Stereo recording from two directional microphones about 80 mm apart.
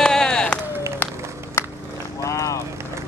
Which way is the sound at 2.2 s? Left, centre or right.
Left.